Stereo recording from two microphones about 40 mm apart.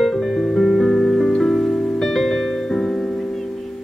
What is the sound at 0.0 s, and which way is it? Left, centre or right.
Music, centre.